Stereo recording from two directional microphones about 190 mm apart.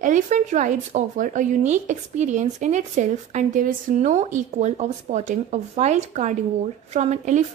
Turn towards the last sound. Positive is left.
turn(degrees=-35)  # may be behind; listen again after turning